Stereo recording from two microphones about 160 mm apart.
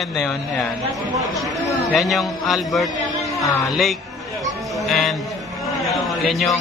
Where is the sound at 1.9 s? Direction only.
Centre (ahead or behind).